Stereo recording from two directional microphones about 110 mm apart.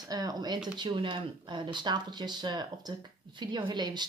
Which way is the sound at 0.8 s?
50° right (ahead or behind).